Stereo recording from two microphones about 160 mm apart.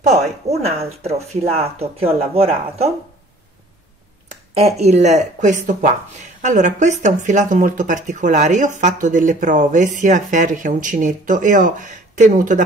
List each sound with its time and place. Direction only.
0.1 s speech: 40° right (ahead or behind)
4.6 s speech: 40° right (ahead or behind)